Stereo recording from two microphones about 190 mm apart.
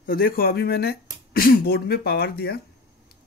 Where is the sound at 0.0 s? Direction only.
50° left (ahead or behind).